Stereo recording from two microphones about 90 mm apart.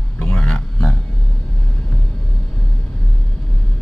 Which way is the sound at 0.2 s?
10° left (ahead or behind).